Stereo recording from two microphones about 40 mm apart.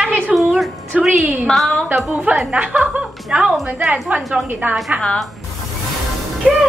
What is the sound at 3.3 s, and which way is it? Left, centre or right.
Speech, centre.